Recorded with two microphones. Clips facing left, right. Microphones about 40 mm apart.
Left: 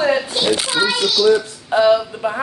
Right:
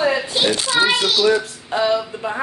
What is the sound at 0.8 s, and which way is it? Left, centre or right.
Speech, right.